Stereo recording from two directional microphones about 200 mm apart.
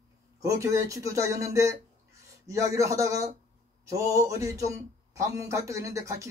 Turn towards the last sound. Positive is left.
turn(degrees=-15)  # may be behind; listen again after turning